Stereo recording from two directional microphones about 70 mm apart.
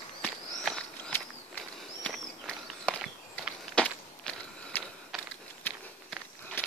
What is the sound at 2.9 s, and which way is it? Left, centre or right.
Walk, centre.